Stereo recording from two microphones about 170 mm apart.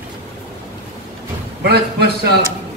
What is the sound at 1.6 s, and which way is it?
Speech, 70° right (ahead or behind).